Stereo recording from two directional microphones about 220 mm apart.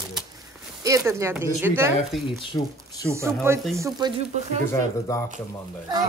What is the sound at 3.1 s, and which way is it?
Speech, 10° right (ahead or behind).